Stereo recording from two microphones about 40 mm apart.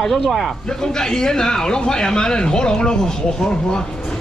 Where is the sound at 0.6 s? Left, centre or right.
Centre.